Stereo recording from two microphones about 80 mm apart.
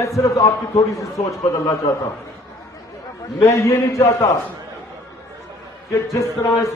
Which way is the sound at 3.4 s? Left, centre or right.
Left.